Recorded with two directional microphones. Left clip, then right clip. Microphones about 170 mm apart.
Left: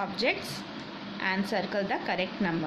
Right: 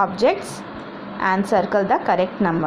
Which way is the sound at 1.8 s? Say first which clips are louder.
Right 12 dB; 20° right (ahead or behind).